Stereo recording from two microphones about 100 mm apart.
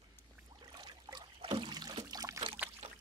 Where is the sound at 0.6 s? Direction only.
50° right (ahead or behind).